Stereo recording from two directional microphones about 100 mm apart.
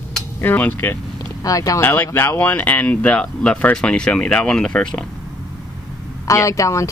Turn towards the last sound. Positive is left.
turn(degrees=30)  # may be behind; listen again after turning